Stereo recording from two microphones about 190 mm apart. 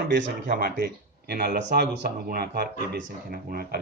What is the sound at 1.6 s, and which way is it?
A man's voice, 65° right (ahead or behind).